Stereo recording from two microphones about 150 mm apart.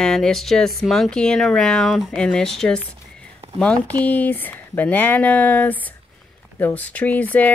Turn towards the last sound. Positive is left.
turn(degrees=10)  # may be behind; listen again after turning